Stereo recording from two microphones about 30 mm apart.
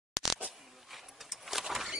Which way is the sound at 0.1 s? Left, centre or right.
Centre.